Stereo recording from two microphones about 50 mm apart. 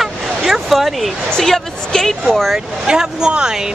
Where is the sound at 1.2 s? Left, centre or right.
Centre.